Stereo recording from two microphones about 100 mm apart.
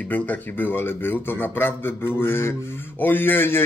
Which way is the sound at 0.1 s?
20° left (ahead or behind).